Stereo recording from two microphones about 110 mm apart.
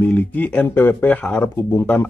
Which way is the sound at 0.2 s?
15° left (ahead or behind).